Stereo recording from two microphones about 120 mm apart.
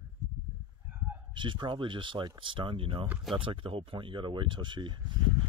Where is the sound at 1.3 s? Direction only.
45° right (ahead or behind).